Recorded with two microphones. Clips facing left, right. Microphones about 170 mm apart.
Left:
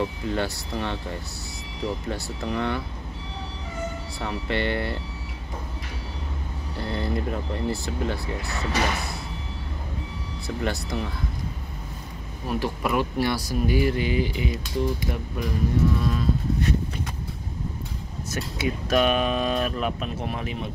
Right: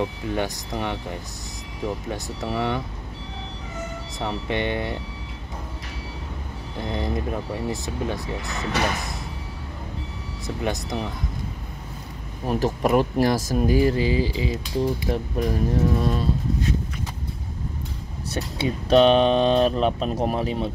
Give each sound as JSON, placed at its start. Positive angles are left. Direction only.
{"t": 0.0, "sound": "speech", "side_deg": -15}
{"t": 4.2, "sound": "speech", "side_deg": -20}
{"t": 6.8, "sound": "speech", "side_deg": -15}
{"t": 10.4, "sound": "speech", "side_deg": -20}
{"t": 12.4, "sound": "speech", "side_deg": -40}
{"t": 18.3, "sound": "speech", "side_deg": -30}
{"t": 20.1, "sound": "speech", "side_deg": -40}